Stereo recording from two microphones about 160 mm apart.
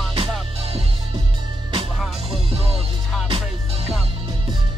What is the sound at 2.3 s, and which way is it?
Music, 40° right (ahead or behind).